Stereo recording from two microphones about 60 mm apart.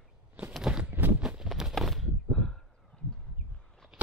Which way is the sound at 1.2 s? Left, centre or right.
Centre.